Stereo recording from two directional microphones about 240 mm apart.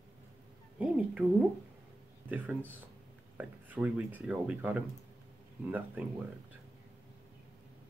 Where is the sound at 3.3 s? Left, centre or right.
Centre.